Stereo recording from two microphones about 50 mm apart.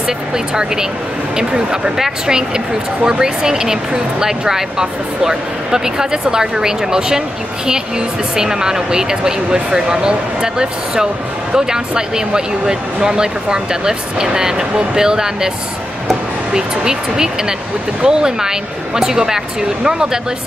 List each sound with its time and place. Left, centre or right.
0.0 s speech: centre
16.5 s speech: centre